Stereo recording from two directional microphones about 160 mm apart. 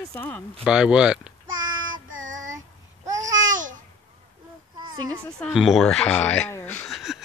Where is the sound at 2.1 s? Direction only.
55° right (ahead or behind).